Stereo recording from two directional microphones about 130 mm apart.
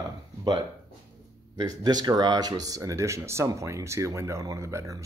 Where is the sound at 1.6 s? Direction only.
30° right (ahead or behind).